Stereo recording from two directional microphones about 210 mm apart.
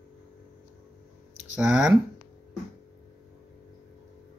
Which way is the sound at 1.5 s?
5° right (ahead or behind).